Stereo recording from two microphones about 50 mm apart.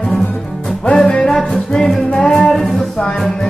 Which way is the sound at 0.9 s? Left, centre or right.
Centre.